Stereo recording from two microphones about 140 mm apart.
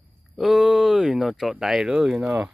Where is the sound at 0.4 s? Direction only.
5° right (ahead or behind).